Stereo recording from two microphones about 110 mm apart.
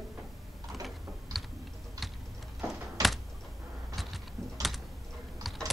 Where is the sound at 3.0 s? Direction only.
35° right (ahead or behind).